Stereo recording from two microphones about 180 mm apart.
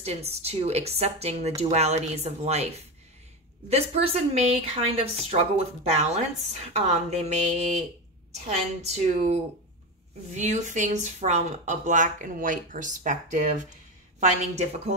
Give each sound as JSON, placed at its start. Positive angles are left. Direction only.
{"t": 0.0, "sound": "speech", "side_deg": -35}
{"t": 8.8, "sound": "speech", "side_deg": -40}